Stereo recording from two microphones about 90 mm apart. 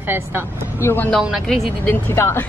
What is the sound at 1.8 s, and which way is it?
Speech, 20° left (ahead or behind).